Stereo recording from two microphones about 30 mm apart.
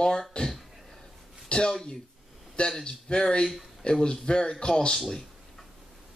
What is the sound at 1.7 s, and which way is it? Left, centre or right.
Speech, left.